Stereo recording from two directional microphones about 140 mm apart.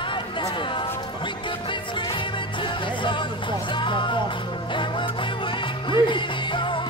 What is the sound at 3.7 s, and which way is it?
Music, 35° left (ahead or behind).